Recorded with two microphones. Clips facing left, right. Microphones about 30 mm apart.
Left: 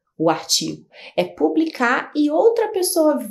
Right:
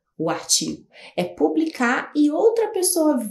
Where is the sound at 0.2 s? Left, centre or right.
Left.